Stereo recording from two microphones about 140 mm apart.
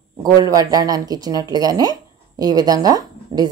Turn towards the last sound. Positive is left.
turn(degrees=-30)  # may be behind; listen again after turning